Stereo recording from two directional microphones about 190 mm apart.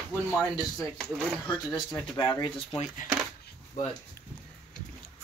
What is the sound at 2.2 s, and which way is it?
Speech, 25° left (ahead or behind).